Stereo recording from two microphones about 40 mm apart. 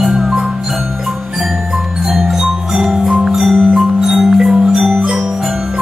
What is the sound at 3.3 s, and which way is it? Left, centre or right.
Marimba, centre.